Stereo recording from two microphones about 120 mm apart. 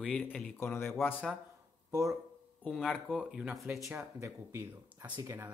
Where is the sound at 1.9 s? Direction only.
25° right (ahead or behind).